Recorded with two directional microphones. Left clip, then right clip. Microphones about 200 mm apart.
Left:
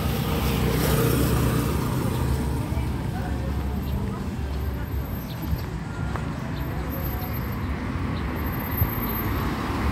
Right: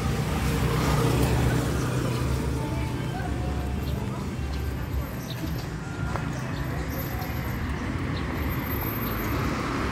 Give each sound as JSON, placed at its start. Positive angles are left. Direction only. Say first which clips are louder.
{"t": 0.7, "sound": "vehicle", "louder": "left 2 dB", "side_deg": 55}